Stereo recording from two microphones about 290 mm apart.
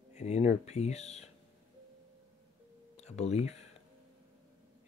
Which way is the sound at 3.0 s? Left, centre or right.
Left.